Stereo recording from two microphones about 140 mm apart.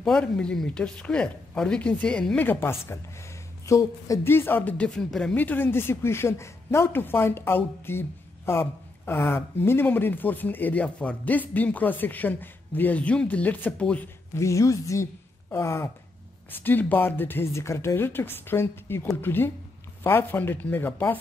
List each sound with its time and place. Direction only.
0.0 s speech: 5° left (ahead or behind)